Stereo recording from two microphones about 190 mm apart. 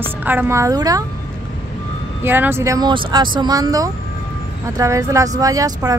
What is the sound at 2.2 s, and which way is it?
Speech, 10° right (ahead or behind).